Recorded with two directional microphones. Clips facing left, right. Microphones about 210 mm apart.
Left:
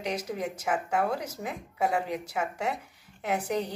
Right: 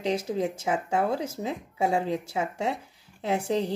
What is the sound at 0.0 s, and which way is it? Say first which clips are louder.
Speech: right 5 dB; 25° right (ahead or behind).